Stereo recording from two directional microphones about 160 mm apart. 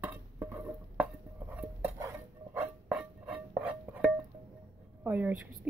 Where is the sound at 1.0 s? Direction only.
15° right (ahead or behind).